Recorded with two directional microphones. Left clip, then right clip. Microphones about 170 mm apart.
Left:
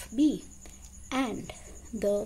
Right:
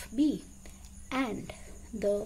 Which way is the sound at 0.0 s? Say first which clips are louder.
Left 3 dB; 10° left (ahead or behind).